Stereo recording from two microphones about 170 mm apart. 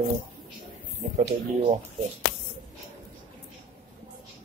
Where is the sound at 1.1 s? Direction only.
40° right (ahead or behind).